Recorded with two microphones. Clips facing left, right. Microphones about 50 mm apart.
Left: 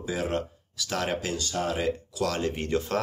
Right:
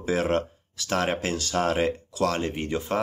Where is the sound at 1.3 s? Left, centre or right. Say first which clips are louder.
Right 4 dB; right.